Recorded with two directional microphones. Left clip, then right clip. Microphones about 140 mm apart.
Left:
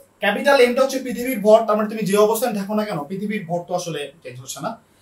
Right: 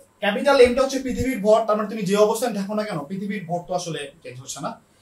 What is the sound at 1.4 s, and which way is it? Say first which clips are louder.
Speech: left 4 dB; 30° right (ahead or behind).